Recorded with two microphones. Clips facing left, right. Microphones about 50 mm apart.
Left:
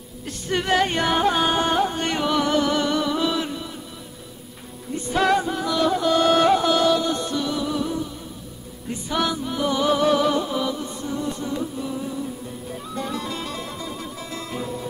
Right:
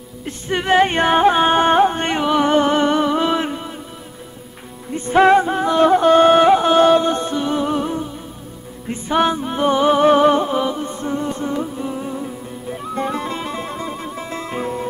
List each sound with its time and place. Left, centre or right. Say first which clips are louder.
0.2 s music: right 3 dB; right
4.9 s music: right 8 dB; right